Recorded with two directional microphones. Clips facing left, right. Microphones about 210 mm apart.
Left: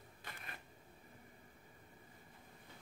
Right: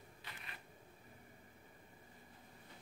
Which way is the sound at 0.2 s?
45° left (ahead or behind).